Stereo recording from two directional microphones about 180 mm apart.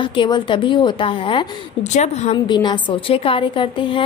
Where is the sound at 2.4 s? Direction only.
25° left (ahead or behind).